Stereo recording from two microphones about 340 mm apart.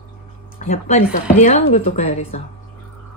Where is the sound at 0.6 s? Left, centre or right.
Centre.